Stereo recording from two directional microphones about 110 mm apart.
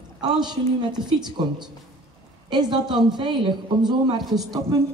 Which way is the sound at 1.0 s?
40° right (ahead or behind).